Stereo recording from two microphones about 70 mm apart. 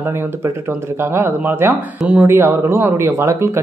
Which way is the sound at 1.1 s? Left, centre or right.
Right.